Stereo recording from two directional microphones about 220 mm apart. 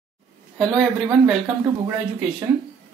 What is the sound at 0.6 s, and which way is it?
Speech, centre (ahead or behind).